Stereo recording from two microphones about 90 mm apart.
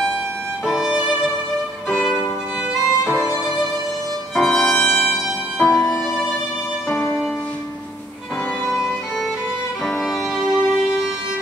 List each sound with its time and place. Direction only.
0.7 s violin: 5° right (ahead or behind)
4.4 s violin: 15° left (ahead or behind)
5.7 s music: 35° left (ahead or behind)
8.6 s violin: centre (ahead or behind)
9.8 s music: centre (ahead or behind)